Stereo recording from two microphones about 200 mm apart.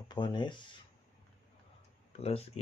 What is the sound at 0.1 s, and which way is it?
Speech, 20° left (ahead or behind).